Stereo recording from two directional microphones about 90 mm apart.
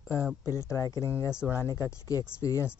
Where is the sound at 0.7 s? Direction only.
35° left (ahead or behind).